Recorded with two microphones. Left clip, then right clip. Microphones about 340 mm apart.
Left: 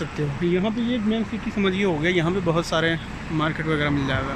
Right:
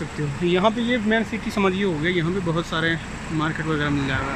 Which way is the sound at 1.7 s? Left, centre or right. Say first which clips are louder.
Left 1 dB; centre.